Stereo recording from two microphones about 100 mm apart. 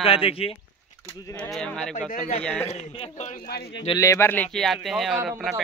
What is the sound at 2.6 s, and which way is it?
Speech, 85° left.